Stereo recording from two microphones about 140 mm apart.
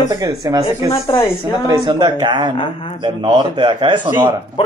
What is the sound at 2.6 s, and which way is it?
Speech, 40° left (ahead or behind).